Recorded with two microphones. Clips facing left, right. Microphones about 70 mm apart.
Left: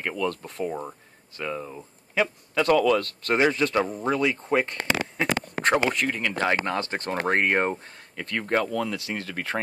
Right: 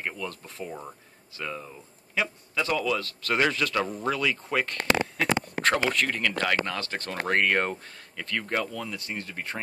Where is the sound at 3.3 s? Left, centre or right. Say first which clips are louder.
Left 3 dB; left.